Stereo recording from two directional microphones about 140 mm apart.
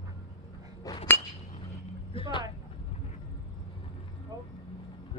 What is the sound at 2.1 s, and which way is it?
Vehicle, 40° left (ahead or behind).